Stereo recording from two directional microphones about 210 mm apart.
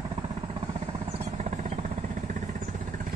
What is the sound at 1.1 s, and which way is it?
Jackhammer, 35° right (ahead or behind).